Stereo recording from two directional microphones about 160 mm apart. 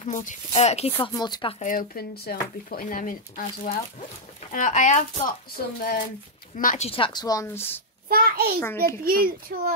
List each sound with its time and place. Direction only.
0.1 s speech: 55° left (ahead or behind)
0.5 s speech: 40° left (ahead or behind)
1.1 s speech: 25° left (ahead or behind)
1.6 s speech: 60° left (ahead or behind)
5.8 s speech: 65° left (ahead or behind)
6.5 s speech: 55° left (ahead or behind)
6.9 s speech: 30° left (ahead or behind)
8.1 s a sound: 70° right (ahead or behind)
8.7 s a child's voice: 70° right (ahead or behind)
9.5 s a child's voice: 90° right